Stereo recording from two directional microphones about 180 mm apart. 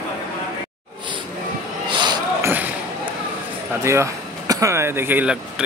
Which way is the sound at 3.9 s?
15° right (ahead or behind).